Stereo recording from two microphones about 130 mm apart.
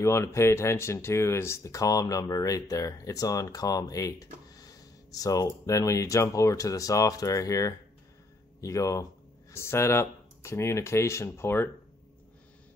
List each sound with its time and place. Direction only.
0.0 s speech: 20° left (ahead or behind)